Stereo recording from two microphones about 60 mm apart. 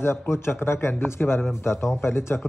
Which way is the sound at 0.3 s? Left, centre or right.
Left.